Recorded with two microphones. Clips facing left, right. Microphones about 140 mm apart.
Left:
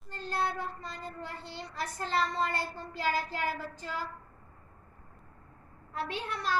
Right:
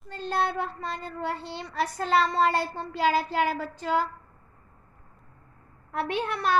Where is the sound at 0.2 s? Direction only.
75° right (ahead or behind).